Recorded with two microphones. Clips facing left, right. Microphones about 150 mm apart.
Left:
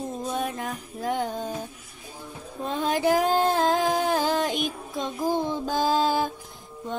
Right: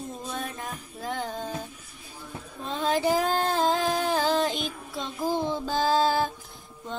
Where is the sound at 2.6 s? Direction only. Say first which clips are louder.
Left 2 dB; 15° left (ahead or behind).